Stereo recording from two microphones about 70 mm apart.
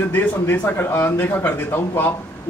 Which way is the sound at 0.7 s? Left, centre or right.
Left.